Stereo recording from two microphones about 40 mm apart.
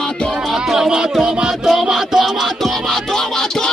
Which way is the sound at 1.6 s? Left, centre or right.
Centre.